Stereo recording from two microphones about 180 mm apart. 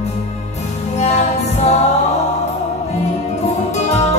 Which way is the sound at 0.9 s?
40° left (ahead or behind).